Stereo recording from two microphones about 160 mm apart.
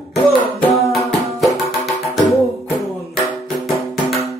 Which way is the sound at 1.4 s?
Centre (ahead or behind).